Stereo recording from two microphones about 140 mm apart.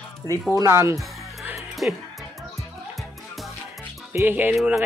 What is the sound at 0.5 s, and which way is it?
A capella, 20° right (ahead or behind).